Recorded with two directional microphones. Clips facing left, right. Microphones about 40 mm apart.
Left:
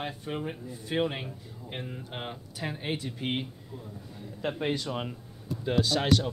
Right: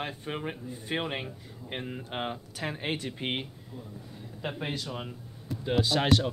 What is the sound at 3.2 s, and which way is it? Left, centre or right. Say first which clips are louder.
Speech: left 3 dB; centre.